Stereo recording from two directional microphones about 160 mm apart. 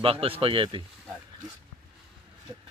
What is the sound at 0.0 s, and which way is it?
Speech, 35° right (ahead or behind).